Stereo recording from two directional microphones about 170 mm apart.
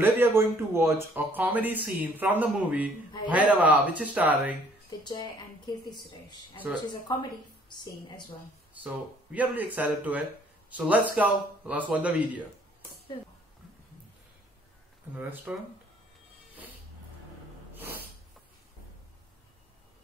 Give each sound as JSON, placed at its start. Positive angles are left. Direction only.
{"t": 0.0, "sound": "speech", "side_deg": -10}
{"t": 4.8, "sound": "a woman's voice", "side_deg": 25}
{"t": 8.7, "sound": "speech", "side_deg": -10}
{"t": 15.1, "sound": "speech", "side_deg": -10}